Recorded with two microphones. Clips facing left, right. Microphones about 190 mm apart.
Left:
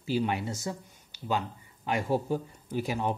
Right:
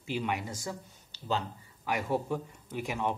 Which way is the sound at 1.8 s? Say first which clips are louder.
Left 2 dB; 25° left (ahead or behind).